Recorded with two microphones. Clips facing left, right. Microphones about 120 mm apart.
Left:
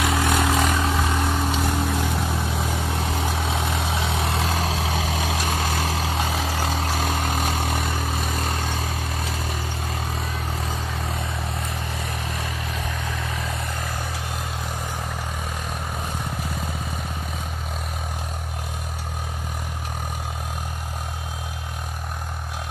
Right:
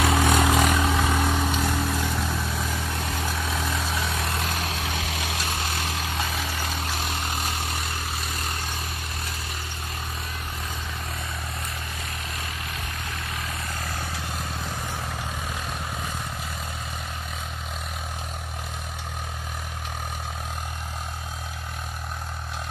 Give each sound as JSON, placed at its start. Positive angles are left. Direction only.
{"t": 0.3, "sound": "vehicle", "side_deg": 0}
{"t": 1.6, "sound": "vehicle", "side_deg": 15}
{"t": 3.0, "sound": "vehicle", "side_deg": 30}